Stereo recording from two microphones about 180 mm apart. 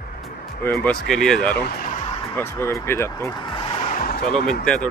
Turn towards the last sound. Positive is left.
turn(degrees=5)  # may be behind; listen again after turning